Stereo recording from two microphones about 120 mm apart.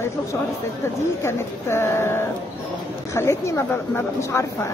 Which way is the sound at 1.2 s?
20° left (ahead or behind).